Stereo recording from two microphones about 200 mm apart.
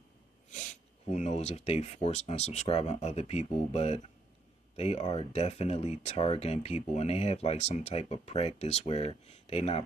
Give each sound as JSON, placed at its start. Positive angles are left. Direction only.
{"t": 1.1, "sound": "speech", "side_deg": 35}